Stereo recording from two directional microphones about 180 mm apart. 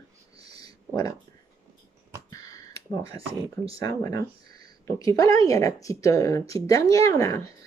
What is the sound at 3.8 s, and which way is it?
A woman's voice, 20° left (ahead or behind).